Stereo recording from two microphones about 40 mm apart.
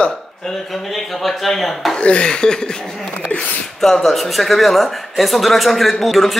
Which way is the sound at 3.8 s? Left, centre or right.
Centre.